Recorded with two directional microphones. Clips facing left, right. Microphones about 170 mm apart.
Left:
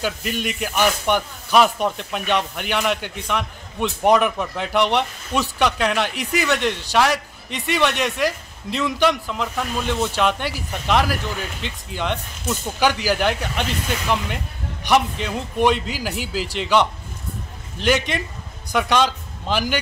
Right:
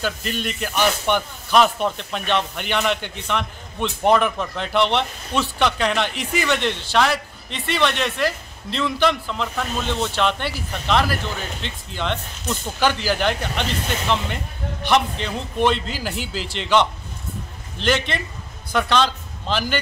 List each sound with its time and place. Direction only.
0.0 s speech: 10° left (ahead or behind)